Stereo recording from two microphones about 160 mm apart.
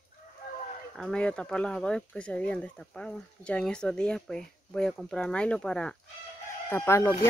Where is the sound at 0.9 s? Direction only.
5° left (ahead or behind).